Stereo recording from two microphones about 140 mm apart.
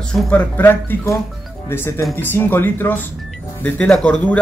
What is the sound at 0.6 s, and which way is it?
Speech, 15° left (ahead or behind).